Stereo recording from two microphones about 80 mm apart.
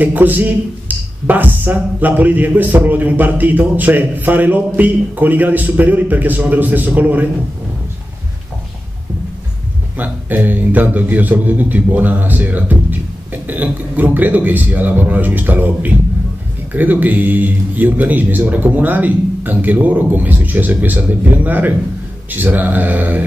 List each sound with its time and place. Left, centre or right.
0.0 s speech: right
9.9 s speech: right